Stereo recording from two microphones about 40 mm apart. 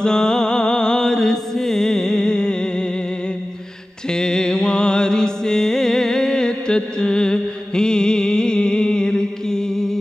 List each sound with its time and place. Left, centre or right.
0.0 s mantra: centre
4.1 s mantra: centre